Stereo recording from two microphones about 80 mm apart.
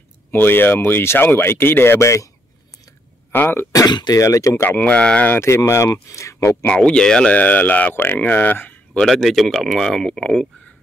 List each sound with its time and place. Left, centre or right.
0.3 s speech: left
3.3 s speech: left
3.7 s speech: left
4.2 s speech: left
4.6 s speech: left
5.4 s speech: left
6.7 s speech: centre
9.0 s speech: centre